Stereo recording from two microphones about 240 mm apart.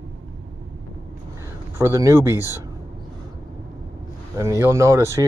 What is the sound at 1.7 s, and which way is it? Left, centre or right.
Speech, centre.